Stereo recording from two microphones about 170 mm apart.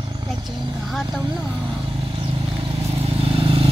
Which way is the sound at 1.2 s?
25° right (ahead or behind).